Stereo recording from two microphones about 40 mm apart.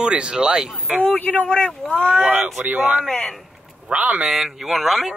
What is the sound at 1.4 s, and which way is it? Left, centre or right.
Speech, left.